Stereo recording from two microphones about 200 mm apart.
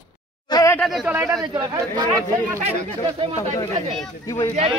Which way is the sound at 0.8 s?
Centre (ahead or behind).